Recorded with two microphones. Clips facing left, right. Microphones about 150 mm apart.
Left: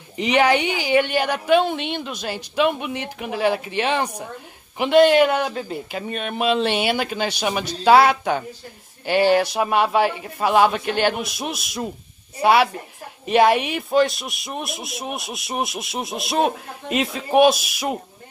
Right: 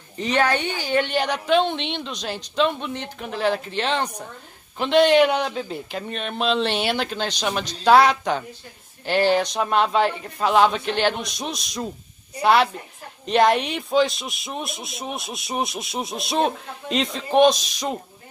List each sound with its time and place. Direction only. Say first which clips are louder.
0.2 s a man's voice: left 4 dB; 10° left (ahead or behind)